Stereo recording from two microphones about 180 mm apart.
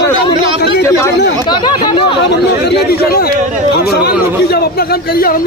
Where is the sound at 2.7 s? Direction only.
60° left (ahead or behind).